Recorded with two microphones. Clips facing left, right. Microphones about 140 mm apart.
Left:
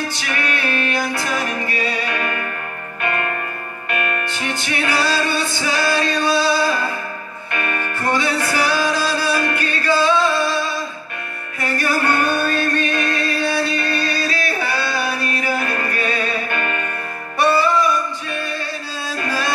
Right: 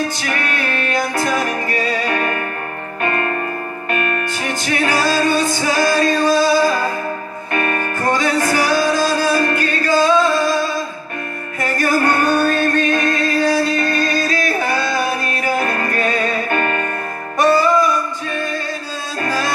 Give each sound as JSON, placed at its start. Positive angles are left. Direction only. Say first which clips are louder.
{"t": 0.3, "sound": "music", "louder": "right 1 dB", "side_deg": -40}
{"t": 4.8, "sound": "music", "louder": "right 3 dB", "side_deg": -40}
{"t": 11.6, "sound": "music", "louder": "right 3 dB", "side_deg": -45}